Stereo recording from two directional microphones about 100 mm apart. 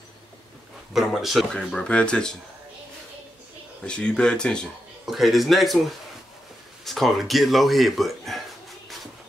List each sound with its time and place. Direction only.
0.9 s speech: centre (ahead or behind)
3.8 s speech: 10° left (ahead or behind)
5.0 s speech: centre (ahead or behind)
6.8 s speech: centre (ahead or behind)